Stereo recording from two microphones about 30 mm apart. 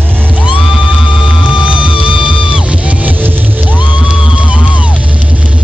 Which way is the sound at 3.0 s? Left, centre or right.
Right.